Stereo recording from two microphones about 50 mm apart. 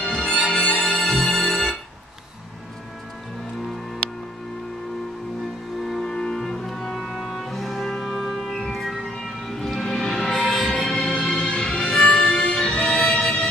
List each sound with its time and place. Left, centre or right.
0.0 s music: centre
5.9 s music: centre